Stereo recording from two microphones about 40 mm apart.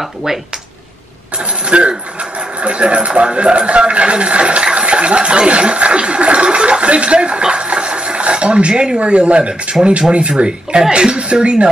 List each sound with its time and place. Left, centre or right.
0.0 s speech: centre
1.4 s speech: right